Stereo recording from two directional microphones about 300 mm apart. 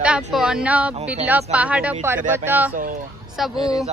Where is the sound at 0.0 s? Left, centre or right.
Centre.